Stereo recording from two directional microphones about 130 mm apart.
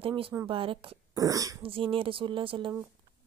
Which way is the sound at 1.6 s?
45° right (ahead or behind).